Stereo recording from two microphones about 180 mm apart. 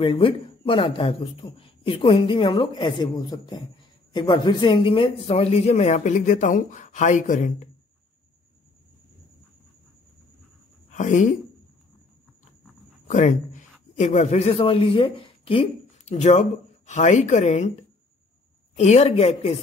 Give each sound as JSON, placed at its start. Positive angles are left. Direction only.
{"t": 0.0, "sound": "a man's voice", "side_deg": 30}
{"t": 10.9, "sound": "a woman's voice", "side_deg": 45}
{"t": 13.1, "sound": "a man's voice", "side_deg": 45}
{"t": 18.8, "sound": "a man's voice", "side_deg": 35}